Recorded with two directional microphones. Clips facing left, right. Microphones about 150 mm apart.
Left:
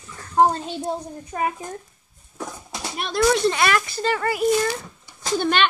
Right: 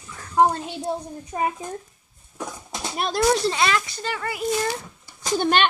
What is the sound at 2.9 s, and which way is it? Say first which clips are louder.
Speech: left 1 dB; 35° right (ahead or behind).